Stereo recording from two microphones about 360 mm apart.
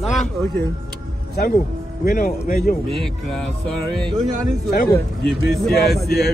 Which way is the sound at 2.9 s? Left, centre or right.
Centre.